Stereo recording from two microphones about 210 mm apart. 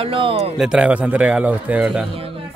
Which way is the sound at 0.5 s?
5° right (ahead or behind).